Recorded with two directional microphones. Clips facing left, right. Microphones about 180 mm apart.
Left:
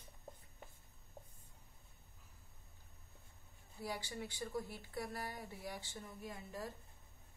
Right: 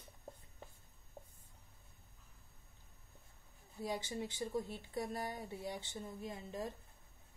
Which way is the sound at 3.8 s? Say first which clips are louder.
Right 4 dB; 20° right (ahead or behind).